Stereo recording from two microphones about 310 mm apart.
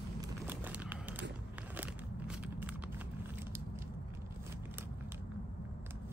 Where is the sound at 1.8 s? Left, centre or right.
Centre.